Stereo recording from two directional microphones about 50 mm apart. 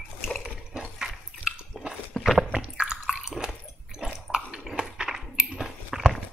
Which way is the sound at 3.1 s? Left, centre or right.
Centre.